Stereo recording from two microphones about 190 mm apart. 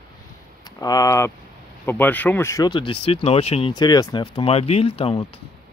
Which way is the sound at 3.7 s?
20° left (ahead or behind).